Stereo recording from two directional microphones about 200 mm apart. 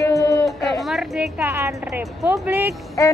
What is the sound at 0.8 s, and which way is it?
Speech, centre (ahead or behind).